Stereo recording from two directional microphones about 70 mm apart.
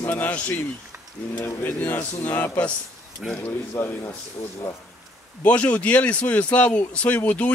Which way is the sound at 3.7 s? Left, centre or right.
Left.